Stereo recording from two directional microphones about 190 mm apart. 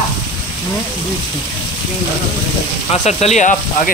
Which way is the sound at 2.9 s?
35° left (ahead or behind).